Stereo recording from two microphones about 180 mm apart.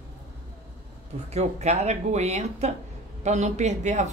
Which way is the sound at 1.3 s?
40° right (ahead or behind).